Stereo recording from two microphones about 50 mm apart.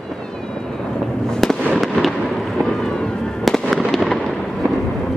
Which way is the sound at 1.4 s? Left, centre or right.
Centre.